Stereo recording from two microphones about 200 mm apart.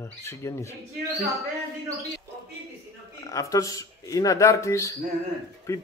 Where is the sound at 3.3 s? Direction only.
15° left (ahead or behind).